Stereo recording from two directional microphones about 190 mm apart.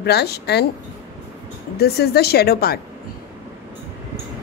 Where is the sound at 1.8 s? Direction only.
60° left (ahead or behind).